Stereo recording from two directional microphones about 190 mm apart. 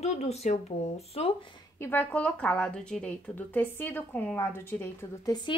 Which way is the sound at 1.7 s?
10° left (ahead or behind).